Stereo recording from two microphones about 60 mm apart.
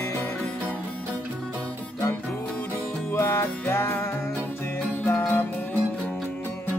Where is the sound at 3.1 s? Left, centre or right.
Left.